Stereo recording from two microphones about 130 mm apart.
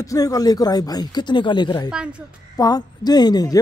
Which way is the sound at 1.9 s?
5° right (ahead or behind).